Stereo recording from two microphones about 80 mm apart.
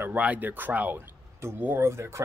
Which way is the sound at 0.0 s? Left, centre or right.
Centre.